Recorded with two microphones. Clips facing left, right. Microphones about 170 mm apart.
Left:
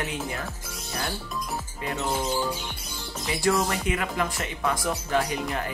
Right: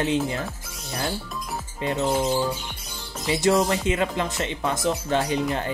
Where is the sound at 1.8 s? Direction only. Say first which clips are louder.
Right 6 dB; 25° right (ahead or behind).